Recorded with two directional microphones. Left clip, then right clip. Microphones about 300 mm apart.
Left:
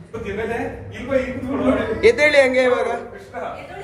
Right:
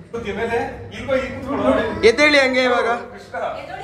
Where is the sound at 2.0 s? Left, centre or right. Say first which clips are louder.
Even; centre.